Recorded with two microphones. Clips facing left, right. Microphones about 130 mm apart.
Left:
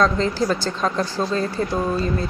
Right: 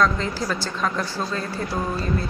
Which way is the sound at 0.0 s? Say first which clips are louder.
Left 3 dB; 25° left (ahead or behind).